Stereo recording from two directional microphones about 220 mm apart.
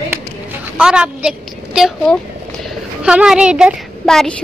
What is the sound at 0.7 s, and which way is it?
A woman's voice, 5° right (ahead or behind).